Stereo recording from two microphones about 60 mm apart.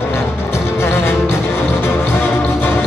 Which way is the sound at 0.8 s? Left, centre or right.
Left.